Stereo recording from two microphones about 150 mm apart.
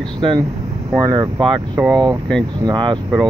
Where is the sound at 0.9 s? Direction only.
25° right (ahead or behind).